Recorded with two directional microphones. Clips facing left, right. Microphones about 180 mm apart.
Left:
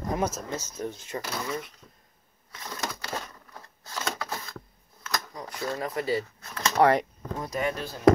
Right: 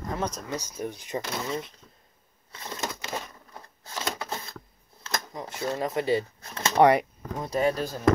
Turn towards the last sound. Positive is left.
turn(degrees=-35)  # may be behind; listen again after turning